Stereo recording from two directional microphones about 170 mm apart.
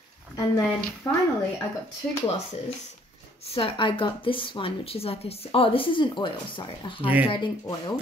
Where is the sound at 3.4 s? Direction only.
35° left (ahead or behind).